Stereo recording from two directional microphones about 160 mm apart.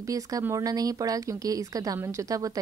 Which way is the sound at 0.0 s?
20° right (ahead or behind).